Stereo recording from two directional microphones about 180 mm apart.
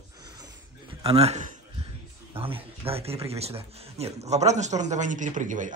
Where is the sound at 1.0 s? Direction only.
35° right (ahead or behind).